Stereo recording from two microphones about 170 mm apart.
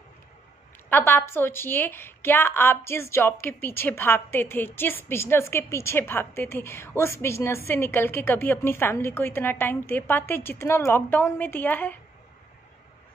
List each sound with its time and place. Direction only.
0.8 s a woman's voice: 15° left (ahead or behind)